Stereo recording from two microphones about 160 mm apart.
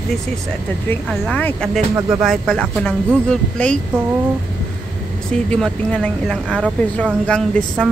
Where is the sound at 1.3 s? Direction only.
10° left (ahead or behind).